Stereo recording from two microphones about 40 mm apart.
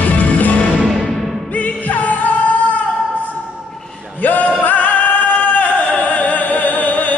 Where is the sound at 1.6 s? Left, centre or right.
Left.